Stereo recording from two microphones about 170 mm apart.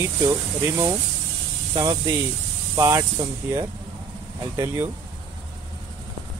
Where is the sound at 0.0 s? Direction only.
15° right (ahead or behind).